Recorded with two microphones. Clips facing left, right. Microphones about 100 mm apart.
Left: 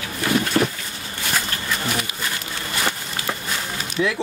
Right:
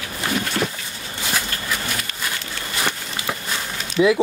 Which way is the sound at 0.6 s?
30° left (ahead or behind).